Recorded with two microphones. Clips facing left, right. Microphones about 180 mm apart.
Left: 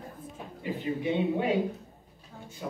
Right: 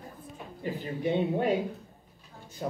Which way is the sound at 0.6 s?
40° right (ahead or behind).